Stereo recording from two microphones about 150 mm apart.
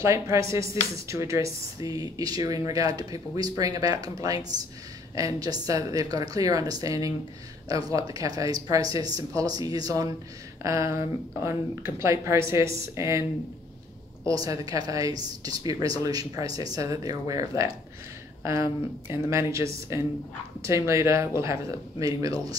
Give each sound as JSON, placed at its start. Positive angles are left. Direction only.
{"t": 0.0, "sound": "speech", "side_deg": -20}